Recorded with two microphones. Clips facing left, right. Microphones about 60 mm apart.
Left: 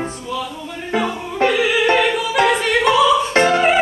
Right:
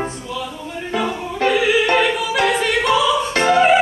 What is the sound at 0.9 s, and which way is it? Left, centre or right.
Music, left.